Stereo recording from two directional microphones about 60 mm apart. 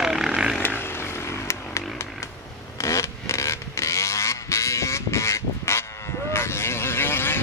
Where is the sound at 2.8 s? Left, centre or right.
Left.